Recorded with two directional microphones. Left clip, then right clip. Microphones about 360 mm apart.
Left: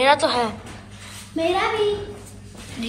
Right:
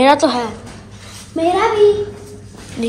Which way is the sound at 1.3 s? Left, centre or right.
Right.